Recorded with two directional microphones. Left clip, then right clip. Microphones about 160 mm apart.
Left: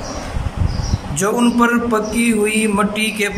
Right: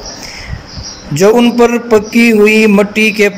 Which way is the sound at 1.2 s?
25° right (ahead or behind).